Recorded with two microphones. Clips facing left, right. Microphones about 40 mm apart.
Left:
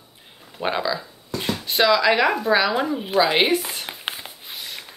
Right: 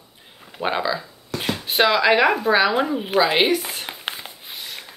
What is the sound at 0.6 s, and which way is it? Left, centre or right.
Speech, centre.